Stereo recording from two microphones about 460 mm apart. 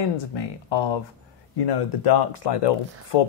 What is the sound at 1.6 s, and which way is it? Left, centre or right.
Speech, left.